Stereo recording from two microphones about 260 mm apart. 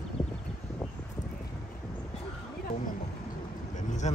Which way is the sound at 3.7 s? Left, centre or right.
Left.